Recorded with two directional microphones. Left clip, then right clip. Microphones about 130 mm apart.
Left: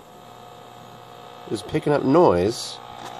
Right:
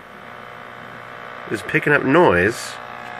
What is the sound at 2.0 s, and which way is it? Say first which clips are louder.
Speech: even; 15° right (ahead or behind).